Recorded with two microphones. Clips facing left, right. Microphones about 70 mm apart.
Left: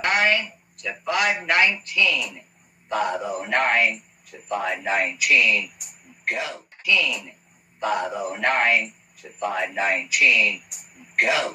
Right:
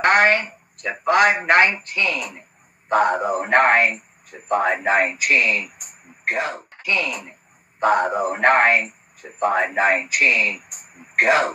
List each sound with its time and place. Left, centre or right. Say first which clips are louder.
0.0 s a man's voice: right 5 dB; right